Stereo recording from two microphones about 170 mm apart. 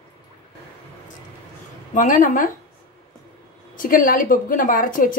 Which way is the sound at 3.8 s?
55° left (ahead or behind).